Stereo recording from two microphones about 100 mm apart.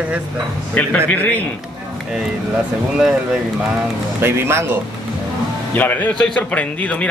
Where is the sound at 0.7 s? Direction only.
15° left (ahead or behind).